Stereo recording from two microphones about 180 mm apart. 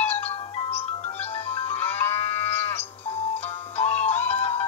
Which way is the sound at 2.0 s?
35° left (ahead or behind).